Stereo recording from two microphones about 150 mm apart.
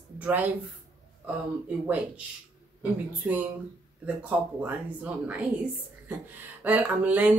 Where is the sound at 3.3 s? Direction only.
15° right (ahead or behind).